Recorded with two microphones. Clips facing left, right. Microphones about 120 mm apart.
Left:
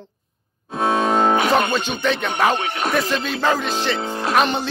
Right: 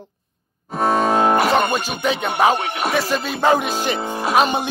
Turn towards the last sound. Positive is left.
turn(degrees=-10)  # may be behind; listen again after turning